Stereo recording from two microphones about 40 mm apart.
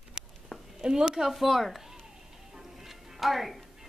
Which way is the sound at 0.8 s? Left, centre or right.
Centre.